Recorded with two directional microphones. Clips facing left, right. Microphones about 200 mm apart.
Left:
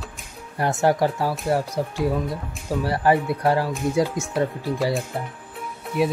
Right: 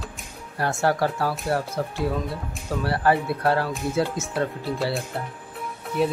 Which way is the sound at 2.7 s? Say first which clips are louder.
Left 2 dB; 15° left (ahead or behind).